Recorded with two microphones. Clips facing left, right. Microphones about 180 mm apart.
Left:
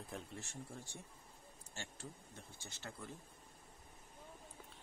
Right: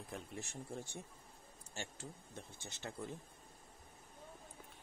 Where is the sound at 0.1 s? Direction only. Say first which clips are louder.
Right 1 dB; centre (ahead or behind).